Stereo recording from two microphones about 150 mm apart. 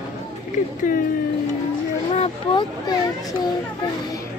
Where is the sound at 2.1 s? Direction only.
45° left (ahead or behind).